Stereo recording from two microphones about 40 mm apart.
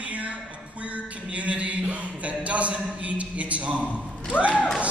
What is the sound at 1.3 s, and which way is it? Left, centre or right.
Speech, right.